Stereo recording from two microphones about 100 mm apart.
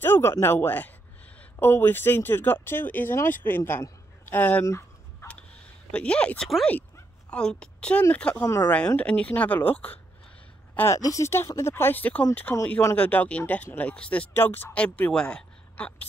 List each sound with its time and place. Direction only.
0.0 s speech: 25° left (ahead or behind)
4.6 s fowl: 30° left (ahead or behind)
5.9 s speech: 10° left (ahead or behind)
8.5 s speech: 30° left (ahead or behind)
8.7 s speech: 10° left (ahead or behind)
10.9 s speech: 35° left (ahead or behind); by 16.1 s 15° left (ahead or behind)